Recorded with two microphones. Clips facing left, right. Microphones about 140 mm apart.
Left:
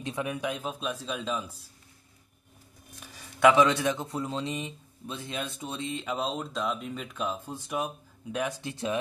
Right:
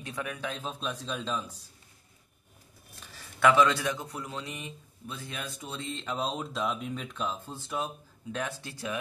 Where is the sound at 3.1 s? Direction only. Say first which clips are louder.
Left 3 dB; 15° left (ahead or behind).